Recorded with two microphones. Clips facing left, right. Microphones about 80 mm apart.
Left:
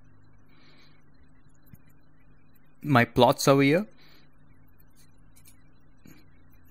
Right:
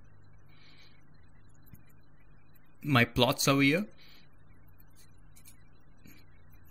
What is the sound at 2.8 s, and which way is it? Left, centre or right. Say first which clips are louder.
Speech: left 7 dB; left.